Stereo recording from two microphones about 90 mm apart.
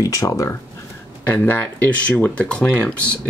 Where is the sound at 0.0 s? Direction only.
40° left (ahead or behind).